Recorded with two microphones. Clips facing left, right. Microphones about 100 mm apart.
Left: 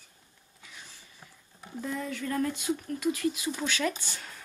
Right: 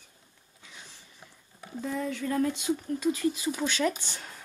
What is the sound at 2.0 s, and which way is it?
Speech, 20° right (ahead or behind).